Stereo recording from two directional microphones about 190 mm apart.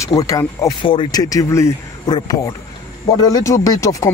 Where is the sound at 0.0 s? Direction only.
15° left (ahead or behind).